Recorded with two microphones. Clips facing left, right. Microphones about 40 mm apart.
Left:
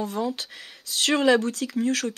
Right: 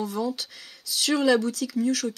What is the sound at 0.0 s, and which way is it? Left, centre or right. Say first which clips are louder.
Speech: left 1 dB; left.